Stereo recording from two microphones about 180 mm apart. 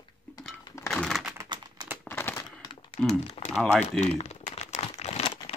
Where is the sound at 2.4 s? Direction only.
25° left (ahead or behind).